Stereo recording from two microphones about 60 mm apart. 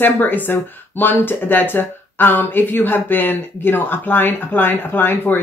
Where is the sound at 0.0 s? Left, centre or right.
Left.